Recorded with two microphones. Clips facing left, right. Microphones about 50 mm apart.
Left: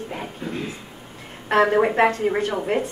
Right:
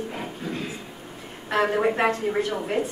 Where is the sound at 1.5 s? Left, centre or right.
Left.